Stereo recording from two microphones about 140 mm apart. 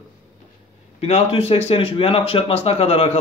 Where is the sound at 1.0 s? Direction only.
45° left (ahead or behind).